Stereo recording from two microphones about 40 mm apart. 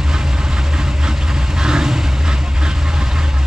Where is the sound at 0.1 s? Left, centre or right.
Centre.